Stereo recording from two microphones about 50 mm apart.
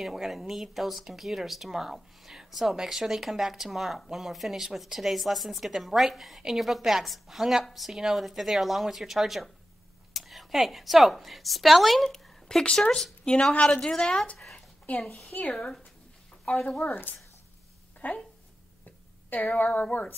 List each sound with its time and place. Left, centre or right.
0.0 s a woman's voice: centre
13.2 s speech: centre
15.5 s speech: centre
16.4 s speech: left
16.8 s speech: left